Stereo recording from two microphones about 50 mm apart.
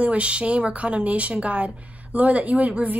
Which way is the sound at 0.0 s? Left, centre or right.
Right.